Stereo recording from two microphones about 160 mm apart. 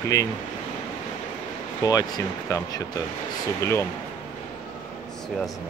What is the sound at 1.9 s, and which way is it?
Speech, 25° left (ahead or behind).